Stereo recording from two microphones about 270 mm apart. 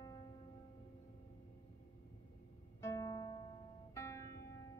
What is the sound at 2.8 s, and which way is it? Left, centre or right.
Music, centre.